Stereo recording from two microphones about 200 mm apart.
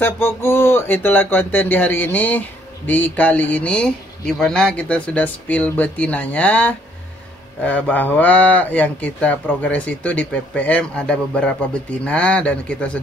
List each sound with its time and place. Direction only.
0.0 s a man's voice: 10° left (ahead or behind)